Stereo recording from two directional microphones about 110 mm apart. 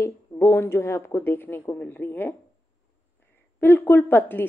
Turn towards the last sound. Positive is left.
turn(degrees=20)  # may be behind; listen again after turning